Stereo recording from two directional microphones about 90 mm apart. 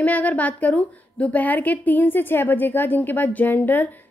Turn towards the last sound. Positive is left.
turn(degrees=20)  # may be behind; listen again after turning